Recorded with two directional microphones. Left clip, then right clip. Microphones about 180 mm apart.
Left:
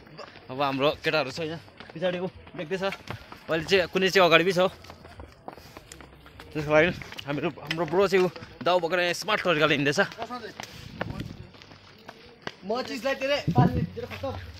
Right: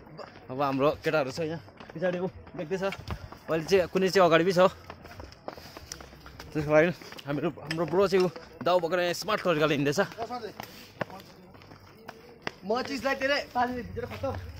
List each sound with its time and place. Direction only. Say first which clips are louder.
0.2 s speech: left 2 dB; 5° left (ahead or behind)
2.0 s speech: left 1 dB; 20° left (ahead or behind)
3.4 s speech: left 1 dB; 5° left (ahead or behind)
6.5 s speech: left 1 dB; centre (ahead or behind)
10.6 s speech: left 2 dB; 40° left (ahead or behind)
11.0 s a sound: left 1 dB; 40° left (ahead or behind)
12.1 s speech: right 1 dB; 40° left (ahead or behind)